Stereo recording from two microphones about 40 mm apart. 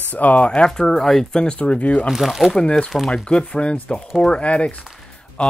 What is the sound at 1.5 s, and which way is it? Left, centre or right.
Speech, left.